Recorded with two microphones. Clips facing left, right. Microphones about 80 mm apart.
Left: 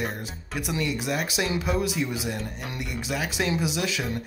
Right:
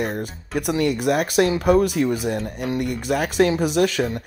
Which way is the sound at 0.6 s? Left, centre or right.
Right.